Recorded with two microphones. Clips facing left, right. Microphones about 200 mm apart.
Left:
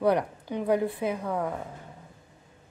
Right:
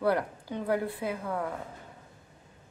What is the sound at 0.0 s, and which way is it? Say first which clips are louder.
Speech: left 3 dB; 15° left (ahead or behind).